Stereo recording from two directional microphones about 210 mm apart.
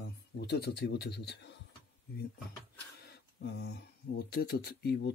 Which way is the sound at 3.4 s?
50° left (ahead or behind).